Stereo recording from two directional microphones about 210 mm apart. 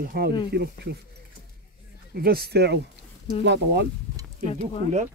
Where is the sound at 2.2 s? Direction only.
45° right (ahead or behind).